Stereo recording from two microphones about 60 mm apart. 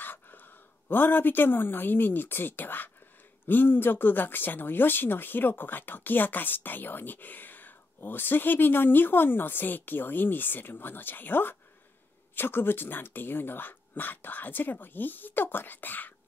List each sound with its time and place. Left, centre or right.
0.0 s speech: left